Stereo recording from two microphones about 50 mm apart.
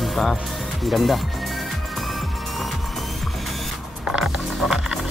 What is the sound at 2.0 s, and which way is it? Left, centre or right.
Music, centre.